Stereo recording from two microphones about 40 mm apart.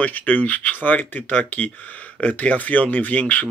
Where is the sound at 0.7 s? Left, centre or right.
Left.